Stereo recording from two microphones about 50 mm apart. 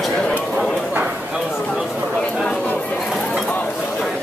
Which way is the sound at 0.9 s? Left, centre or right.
Right.